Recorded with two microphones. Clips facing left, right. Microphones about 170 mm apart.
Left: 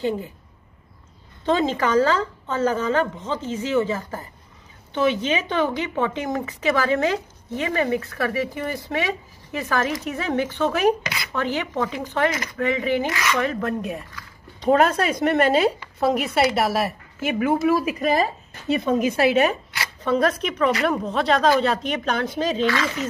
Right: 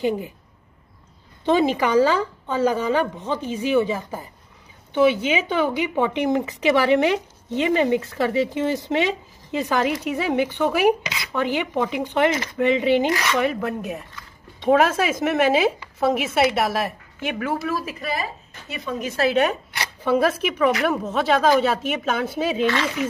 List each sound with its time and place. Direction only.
1.4 s a woman's voice: 15° right (ahead or behind); by 17.6 s 5° left (ahead or behind)
17.6 s a woman's voice: 20° left (ahead or behind); by 19.6 s 5° left (ahead or behind)
20.0 s a woman's voice: 5° right (ahead or behind)